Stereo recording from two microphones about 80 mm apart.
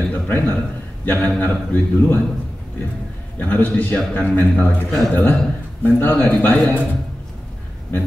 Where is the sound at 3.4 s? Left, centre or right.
Left.